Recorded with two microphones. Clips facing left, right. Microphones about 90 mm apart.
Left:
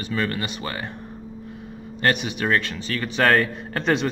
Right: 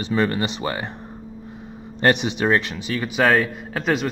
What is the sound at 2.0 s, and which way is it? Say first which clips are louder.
A man's voice: right 4 dB; 25° right (ahead or behind).